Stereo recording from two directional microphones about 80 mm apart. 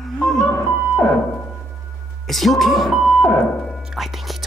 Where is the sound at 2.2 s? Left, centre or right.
Centre.